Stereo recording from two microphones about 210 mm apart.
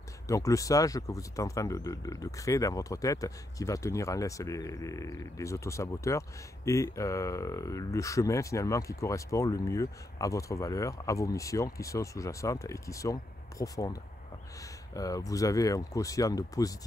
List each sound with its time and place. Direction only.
0.3 s speech: 15° left (ahead or behind)
15.0 s speech: 15° left (ahead or behind)